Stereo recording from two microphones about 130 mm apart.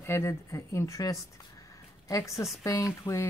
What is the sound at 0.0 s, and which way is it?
Speech, 20° left (ahead or behind).